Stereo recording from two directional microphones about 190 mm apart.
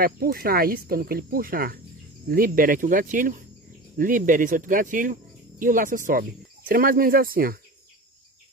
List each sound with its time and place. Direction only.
0.0 s speech: 50° right (ahead or behind)